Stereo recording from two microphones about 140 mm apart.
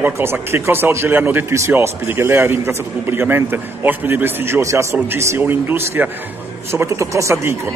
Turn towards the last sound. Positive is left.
turn(degrees=-20)  # may be behind; listen again after turning